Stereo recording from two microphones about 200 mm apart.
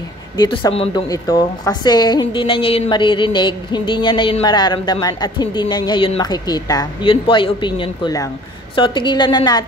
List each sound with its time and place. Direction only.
0.4 s a woman's voice: 25° left (ahead or behind)